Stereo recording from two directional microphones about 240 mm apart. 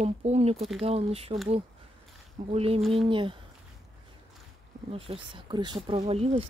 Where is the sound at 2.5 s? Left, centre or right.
Right.